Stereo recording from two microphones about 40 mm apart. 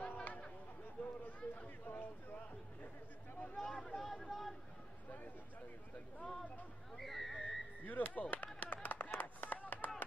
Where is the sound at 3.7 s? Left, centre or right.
Left.